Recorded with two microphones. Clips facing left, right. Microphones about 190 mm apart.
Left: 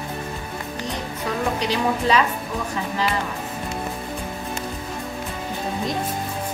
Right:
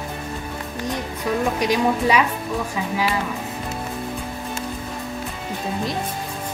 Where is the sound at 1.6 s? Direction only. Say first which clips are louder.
Right 3 dB; 10° right (ahead or behind).